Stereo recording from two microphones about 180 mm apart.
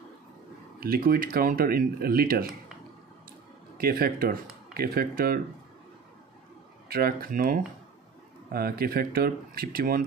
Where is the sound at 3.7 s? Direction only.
55° right (ahead or behind).